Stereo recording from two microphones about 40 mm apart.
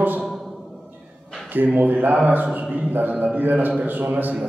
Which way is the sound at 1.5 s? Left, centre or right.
Right.